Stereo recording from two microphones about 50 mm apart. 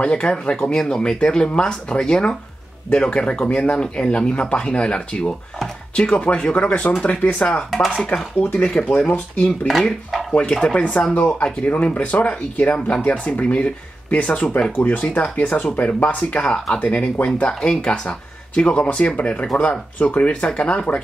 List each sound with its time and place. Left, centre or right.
0.0 s speech: centre
8.4 s speech: left
8.6 s speech: centre
10.3 s speech: centre
15.4 s speech: left
17.3 s speech: centre